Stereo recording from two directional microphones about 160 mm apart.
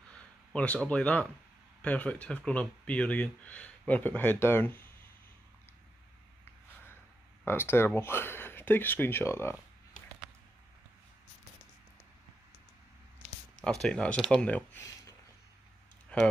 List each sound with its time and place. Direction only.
0.5 s speech: 5° left (ahead or behind)
7.4 s speech: 15° left (ahead or behind)
13.6 s speech: 5° left (ahead or behind); by 15.1 s 20° left (ahead or behind)
16.1 s speech: 5° left (ahead or behind)